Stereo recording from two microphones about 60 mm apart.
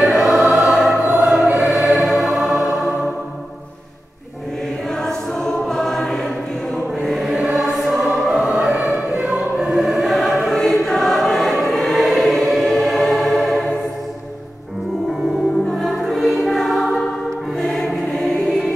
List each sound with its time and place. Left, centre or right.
0.0 s choir: centre
2.5 s music: centre
5.0 s choir: centre
8.8 s choir: right
9.4 s choir: centre
15.7 s music: centre
17.6 s choir: centre